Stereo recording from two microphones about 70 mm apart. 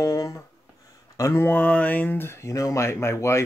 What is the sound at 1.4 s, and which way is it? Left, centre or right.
Speech, left.